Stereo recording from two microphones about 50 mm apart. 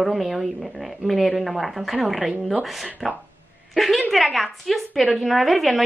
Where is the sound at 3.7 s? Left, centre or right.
Centre.